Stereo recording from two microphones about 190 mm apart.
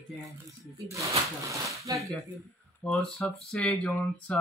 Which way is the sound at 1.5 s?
15° right (ahead or behind).